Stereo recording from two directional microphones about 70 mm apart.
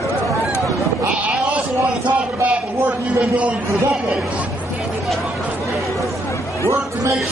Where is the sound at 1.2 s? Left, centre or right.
Centre.